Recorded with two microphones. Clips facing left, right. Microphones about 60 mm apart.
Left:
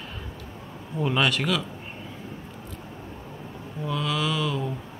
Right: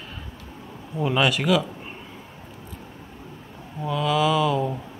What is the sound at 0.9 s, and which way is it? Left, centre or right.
Mantra, centre.